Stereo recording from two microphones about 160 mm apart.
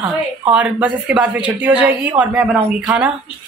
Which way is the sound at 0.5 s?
10° right (ahead or behind).